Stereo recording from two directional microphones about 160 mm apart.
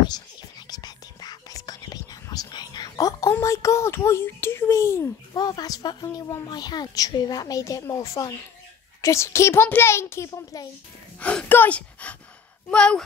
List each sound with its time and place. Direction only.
0.0 s a child's voice: 25° left (ahead or behind)
11.1 s gasp: 10° left (ahead or behind)
12.7 s speech: 5° left (ahead or behind)